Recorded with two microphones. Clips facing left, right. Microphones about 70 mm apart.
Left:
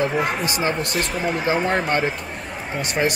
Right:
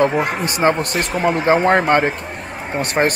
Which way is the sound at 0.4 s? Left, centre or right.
Right.